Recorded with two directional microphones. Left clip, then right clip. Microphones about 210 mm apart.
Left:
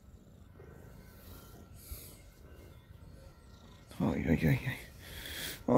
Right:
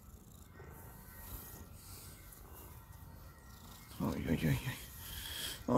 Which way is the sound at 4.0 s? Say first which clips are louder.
Left 5 dB; 20° left (ahead or behind).